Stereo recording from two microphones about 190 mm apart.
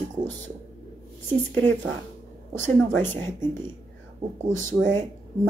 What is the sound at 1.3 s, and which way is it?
Speech, 10° left (ahead or behind).